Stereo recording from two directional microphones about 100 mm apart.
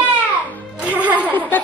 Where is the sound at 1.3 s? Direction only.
20° left (ahead or behind).